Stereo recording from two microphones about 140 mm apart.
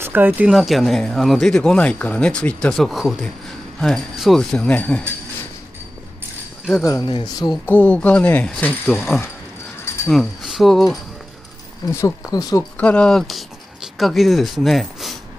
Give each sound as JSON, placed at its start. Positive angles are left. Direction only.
{"t": 0.0, "sound": "speech", "side_deg": -15}
{"t": 0.5, "sound": "speech", "side_deg": 0}
{"t": 6.8, "sound": "speech", "side_deg": 20}
{"t": 7.6, "sound": "speech", "side_deg": 10}
{"t": 8.8, "sound": "speech", "side_deg": 0}
{"t": 11.9, "sound": "speech", "side_deg": 20}
{"t": 12.7, "sound": "speech", "side_deg": 10}